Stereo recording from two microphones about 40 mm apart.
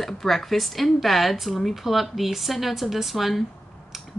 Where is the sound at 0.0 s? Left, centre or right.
Centre.